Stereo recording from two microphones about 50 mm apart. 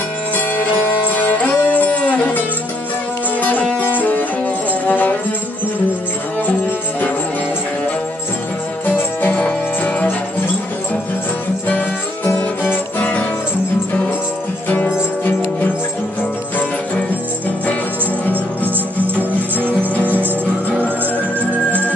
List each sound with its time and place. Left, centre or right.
1.1 s music: left
9.3 s music: left
13.0 s music: left
14.7 s music: left